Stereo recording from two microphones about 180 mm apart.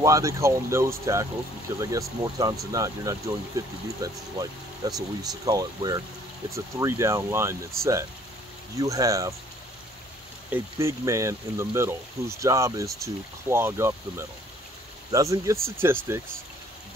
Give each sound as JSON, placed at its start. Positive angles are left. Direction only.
{"t": 0.0, "sound": "speech", "side_deg": -15}
{"t": 10.5, "sound": "speech", "side_deg": -15}